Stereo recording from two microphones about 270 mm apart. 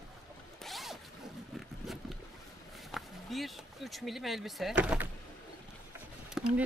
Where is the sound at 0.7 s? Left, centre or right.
Centre.